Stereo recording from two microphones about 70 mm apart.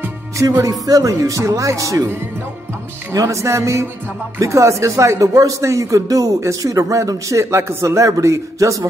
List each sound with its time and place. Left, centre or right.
0.6 s speech: right
3.1 s speech: right